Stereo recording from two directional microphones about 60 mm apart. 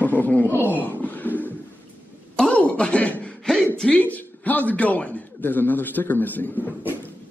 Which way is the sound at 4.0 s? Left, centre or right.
Left.